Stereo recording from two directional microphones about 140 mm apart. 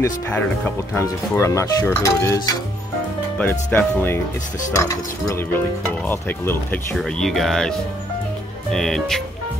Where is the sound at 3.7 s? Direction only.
15° left (ahead or behind).